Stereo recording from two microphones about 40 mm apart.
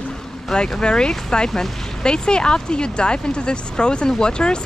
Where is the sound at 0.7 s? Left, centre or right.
Left.